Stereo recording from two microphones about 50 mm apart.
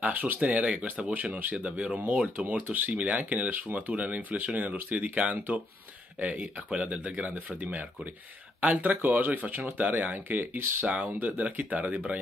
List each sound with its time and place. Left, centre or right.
0.0 s speech: right
10.9 s speech: right